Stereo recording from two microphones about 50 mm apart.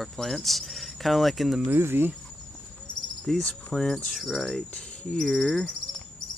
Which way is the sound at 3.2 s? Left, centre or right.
Centre.